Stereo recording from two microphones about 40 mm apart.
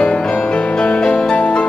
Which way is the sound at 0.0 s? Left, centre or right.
Left.